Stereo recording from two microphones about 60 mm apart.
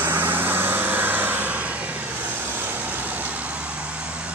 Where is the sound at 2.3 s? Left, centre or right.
Right.